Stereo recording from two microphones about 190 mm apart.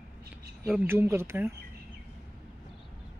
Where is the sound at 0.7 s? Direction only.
10° right (ahead or behind).